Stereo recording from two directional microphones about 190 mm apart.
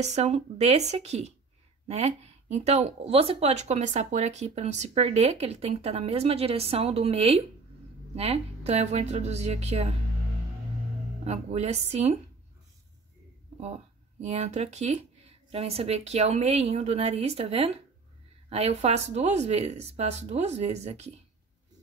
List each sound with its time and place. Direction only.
0.0 s speech: 35° right (ahead or behind)
11.2 s speech: 35° right (ahead or behind)
13.6 s speech: 35° right (ahead or behind)